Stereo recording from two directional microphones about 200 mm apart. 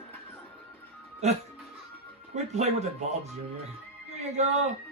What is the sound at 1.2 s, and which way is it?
Speech, 35° right (ahead or behind).